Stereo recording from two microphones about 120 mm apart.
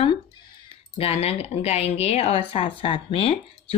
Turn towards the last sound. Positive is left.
turn(degrees=50)  # may be behind; listen again after turning